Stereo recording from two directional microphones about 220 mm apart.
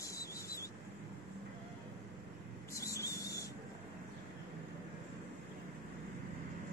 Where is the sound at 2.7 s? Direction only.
15° left (ahead or behind).